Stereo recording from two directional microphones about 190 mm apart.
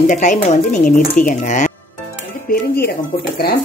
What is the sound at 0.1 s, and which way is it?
Speech, 40° left (ahead or behind).